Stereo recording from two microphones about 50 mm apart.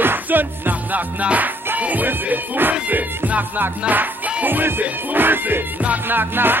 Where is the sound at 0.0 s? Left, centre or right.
Right.